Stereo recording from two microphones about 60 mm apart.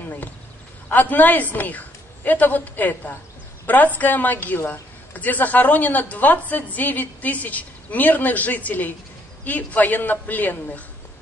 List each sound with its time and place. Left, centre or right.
0.8 s a woman's voice: left